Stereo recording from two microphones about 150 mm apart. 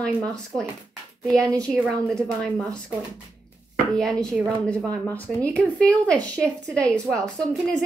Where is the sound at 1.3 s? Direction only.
25° right (ahead or behind).